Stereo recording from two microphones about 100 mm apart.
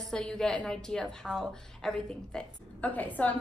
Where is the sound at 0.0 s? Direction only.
5° left (ahead or behind).